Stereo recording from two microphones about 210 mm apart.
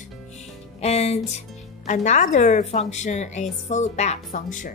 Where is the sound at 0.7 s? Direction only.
30° left (ahead or behind).